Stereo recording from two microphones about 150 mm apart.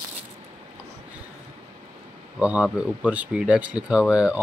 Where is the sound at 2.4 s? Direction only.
10° right (ahead or behind).